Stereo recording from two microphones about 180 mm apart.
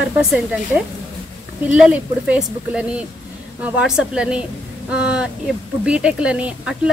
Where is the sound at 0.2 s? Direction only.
5° right (ahead or behind).